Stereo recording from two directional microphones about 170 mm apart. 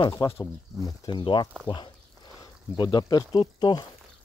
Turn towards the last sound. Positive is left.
turn(degrees=25)  # may be behind; listen again after turning